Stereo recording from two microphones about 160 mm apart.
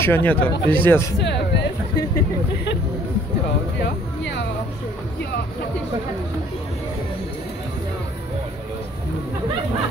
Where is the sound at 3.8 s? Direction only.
90° left.